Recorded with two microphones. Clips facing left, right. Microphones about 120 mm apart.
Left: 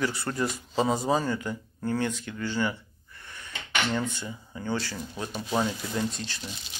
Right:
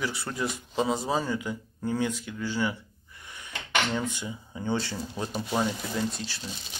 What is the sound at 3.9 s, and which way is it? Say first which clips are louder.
Speech: even; 15° right (ahead or behind).